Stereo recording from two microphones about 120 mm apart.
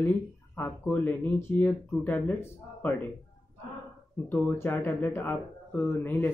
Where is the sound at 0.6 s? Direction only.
15° left (ahead or behind).